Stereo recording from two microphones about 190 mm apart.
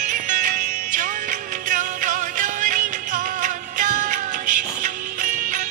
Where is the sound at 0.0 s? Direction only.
45° right (ahead or behind).